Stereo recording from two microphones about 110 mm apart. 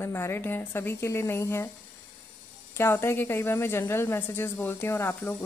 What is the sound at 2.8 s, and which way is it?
A woman's voice, 25° left (ahead or behind).